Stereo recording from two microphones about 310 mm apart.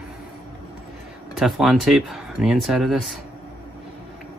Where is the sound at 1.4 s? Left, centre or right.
Centre.